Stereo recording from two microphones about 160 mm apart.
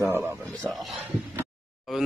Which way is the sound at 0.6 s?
Centre (ahead or behind).